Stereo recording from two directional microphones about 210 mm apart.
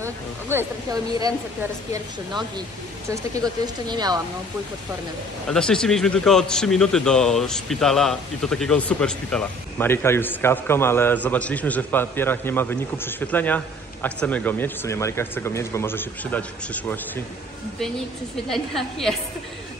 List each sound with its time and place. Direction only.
0.0 s speech: 10° right (ahead or behind)
5.5 s a man's voice: 5° left (ahead or behind)
18.5 s a man's voice: centre (ahead or behind)